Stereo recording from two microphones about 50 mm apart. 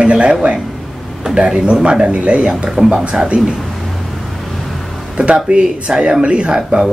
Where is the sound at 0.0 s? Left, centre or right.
Right.